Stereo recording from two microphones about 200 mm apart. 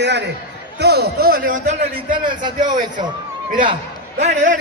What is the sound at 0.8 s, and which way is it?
Speech, 50° right (ahead or behind).